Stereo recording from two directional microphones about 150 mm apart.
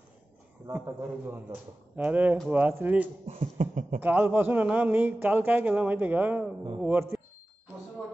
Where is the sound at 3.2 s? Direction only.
40° right (ahead or behind).